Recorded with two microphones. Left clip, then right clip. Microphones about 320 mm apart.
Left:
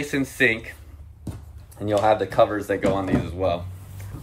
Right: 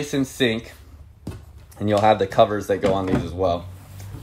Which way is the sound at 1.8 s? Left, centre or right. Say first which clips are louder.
Right 2 dB; right.